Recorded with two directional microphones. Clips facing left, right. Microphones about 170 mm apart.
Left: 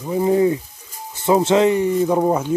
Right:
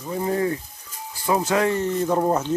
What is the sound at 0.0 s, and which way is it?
Speech, 15° left (ahead or behind).